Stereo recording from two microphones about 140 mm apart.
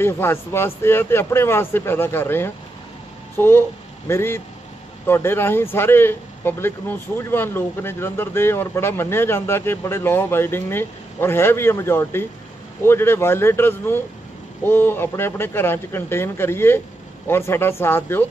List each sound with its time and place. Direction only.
0.0 s speech: 15° left (ahead or behind)